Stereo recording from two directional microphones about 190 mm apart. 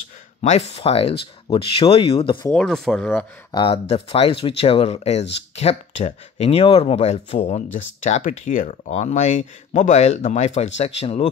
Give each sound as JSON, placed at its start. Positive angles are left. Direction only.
{"t": 0.4, "sound": "speech", "side_deg": 35}
{"t": 2.5, "sound": "speech", "side_deg": 0}
{"t": 3.5, "sound": "speech", "side_deg": 30}